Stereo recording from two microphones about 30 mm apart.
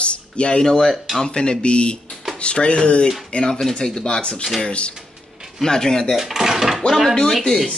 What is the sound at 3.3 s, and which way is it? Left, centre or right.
A man's voice, left.